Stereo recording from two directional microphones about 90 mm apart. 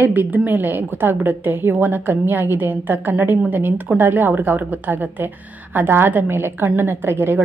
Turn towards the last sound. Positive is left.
turn(degrees=-25)  # may be behind; listen again after turning